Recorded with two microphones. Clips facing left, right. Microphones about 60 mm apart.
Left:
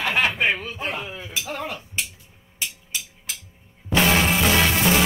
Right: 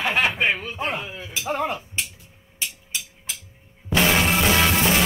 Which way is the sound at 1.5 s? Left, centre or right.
Centre.